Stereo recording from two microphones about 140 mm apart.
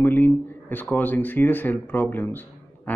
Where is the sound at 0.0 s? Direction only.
15° left (ahead or behind).